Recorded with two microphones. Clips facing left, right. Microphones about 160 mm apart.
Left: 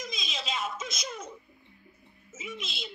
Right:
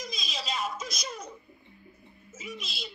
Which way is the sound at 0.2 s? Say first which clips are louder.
Right 1 dB; centre (ahead or behind).